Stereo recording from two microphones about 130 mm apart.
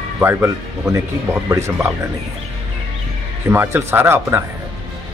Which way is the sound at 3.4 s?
20° right (ahead or behind).